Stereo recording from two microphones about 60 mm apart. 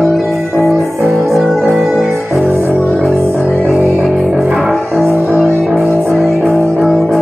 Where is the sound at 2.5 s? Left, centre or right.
Right.